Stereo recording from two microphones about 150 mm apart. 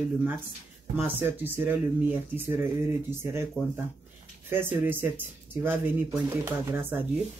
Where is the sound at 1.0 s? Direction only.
15° right (ahead or behind).